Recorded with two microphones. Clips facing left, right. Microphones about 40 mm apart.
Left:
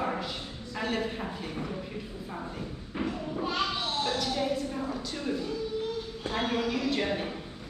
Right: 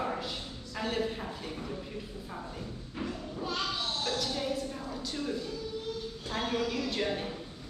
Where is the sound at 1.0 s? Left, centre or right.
Centre.